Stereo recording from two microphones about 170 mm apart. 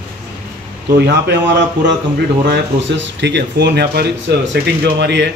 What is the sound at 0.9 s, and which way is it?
A man's voice, 80° right.